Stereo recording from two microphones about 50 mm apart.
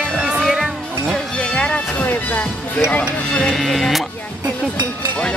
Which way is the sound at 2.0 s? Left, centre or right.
Left.